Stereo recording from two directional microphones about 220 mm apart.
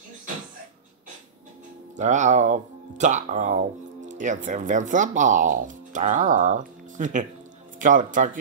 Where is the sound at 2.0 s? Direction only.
35° right (ahead or behind).